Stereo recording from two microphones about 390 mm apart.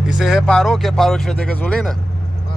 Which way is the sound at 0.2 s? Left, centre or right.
Centre.